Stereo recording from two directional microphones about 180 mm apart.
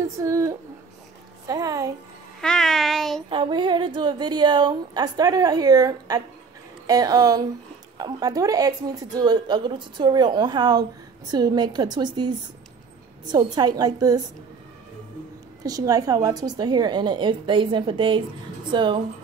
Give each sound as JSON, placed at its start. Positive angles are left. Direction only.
{"t": 0.2, "sound": "a woman's voice", "side_deg": -15}
{"t": 2.4, "sound": "child singing", "side_deg": 5}
{"t": 3.3, "sound": "a woman's voice", "side_deg": -25}
{"t": 15.6, "sound": "a woman's voice", "side_deg": -20}